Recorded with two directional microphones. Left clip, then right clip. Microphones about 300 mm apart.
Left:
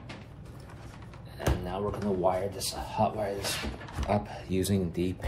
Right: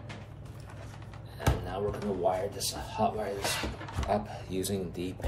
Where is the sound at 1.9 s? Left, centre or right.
Centre.